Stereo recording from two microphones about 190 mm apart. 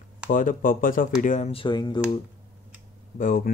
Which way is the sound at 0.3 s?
45° left (ahead or behind).